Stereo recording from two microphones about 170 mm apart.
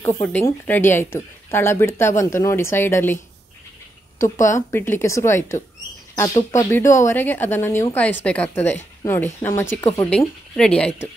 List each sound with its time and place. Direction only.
0.0 s speech: 15° left (ahead or behind)
4.2 s speech: 15° left (ahead or behind)